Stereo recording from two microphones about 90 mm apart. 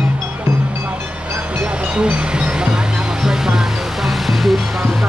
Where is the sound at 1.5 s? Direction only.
10° right (ahead or behind).